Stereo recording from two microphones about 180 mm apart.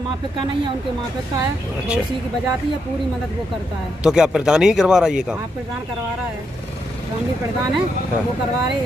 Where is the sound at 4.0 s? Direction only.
5° right (ahead or behind).